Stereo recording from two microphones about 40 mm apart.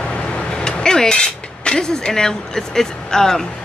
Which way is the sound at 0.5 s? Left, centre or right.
Centre.